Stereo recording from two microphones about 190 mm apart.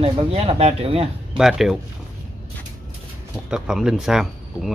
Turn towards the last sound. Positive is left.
turn(degrees=0)  # may be behind; listen again after turning